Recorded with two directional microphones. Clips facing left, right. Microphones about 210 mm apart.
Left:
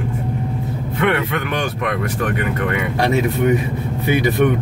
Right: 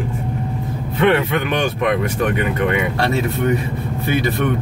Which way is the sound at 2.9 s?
15° left (ahead or behind).